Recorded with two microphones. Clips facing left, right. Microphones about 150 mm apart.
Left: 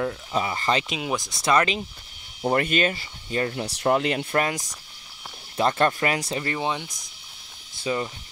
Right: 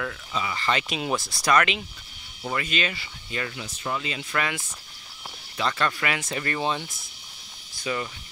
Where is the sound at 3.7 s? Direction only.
70° left (ahead or behind).